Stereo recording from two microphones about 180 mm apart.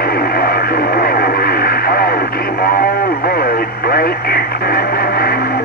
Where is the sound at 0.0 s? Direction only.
55° left (ahead or behind).